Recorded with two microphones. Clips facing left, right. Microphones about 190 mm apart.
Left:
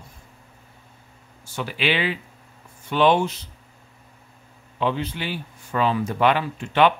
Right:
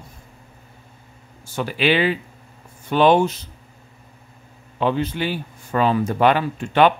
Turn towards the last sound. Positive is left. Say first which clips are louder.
# right 3 dB
turn(degrees=-45)  # may be behind; listen again after turning